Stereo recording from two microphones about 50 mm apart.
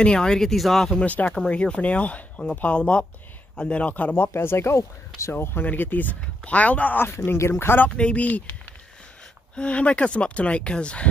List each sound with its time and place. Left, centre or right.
0.0 s speech: centre
1.0 s speech: left
1.5 s speech: left
4.1 s speech: left
5.3 s speech: left
7.3 s speech: left
8.0 s speech: left
9.6 s speech: left